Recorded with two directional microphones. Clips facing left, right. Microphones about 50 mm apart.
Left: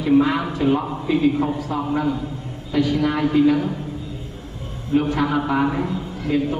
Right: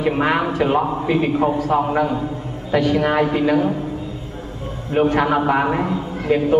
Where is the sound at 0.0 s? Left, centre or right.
Right.